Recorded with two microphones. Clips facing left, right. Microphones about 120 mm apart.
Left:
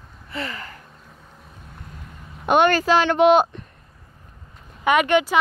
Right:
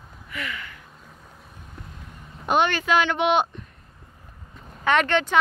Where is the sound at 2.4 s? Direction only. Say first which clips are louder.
Left 5 dB; 60° left (ahead or behind).